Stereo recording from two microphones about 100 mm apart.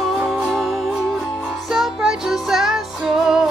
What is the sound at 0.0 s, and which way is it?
Music, centre (ahead or behind).